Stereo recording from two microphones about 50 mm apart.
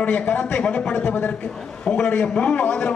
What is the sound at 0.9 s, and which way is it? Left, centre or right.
Speech, left.